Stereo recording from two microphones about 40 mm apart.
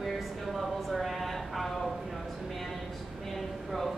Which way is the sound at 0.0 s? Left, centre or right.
Centre.